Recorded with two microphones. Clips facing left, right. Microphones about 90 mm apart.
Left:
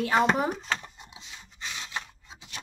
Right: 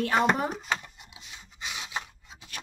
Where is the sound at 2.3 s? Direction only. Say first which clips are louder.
Left 1 dB; 20° left (ahead or behind).